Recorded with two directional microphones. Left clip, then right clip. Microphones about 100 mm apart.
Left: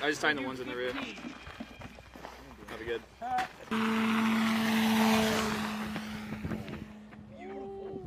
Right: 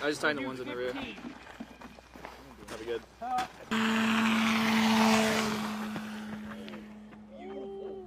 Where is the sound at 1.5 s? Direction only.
30° left (ahead or behind).